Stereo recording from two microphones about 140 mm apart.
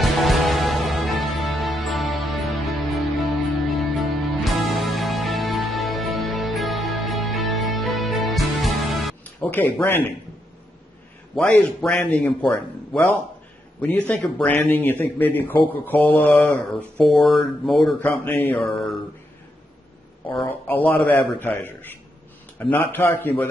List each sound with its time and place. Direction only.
0.0 s music: centre (ahead or behind)
9.4 s speech: 10° left (ahead or behind)
11.3 s speech: 10° left (ahead or behind)
14.0 s speech: 10° left (ahead or behind)
18.0 s speech: 15° left (ahead or behind)
20.4 s speech: 15° left (ahead or behind)